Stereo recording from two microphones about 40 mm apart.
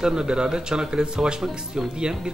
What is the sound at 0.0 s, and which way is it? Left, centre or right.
A man's voice, centre.